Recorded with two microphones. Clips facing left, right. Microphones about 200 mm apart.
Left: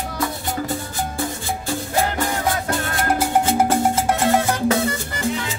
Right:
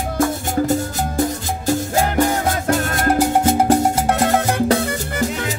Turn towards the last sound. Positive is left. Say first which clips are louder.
# right 1 dB
turn(degrees=-40)  # may be behind; listen again after turning